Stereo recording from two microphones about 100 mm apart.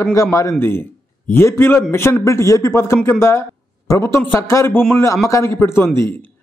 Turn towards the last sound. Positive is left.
turn(degrees=20)  # may be behind; listen again after turning